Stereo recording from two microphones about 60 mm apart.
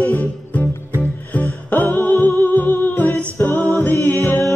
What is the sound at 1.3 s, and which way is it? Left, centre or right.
Music, left.